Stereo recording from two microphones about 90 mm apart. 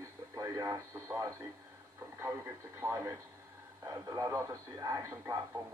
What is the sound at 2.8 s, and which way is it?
Speech, 35° right (ahead or behind).